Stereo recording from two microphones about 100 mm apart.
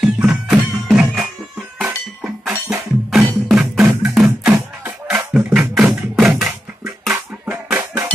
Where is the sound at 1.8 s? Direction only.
15° right (ahead or behind).